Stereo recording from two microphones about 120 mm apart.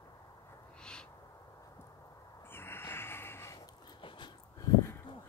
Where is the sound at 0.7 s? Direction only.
5° left (ahead or behind).